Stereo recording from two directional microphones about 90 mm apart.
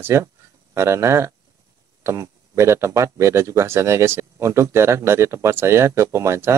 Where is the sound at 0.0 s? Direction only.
30° right (ahead or behind).